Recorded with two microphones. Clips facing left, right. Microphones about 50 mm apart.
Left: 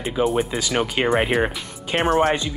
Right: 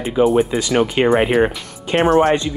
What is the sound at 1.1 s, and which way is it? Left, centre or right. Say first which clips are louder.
Speech: right 5 dB; centre.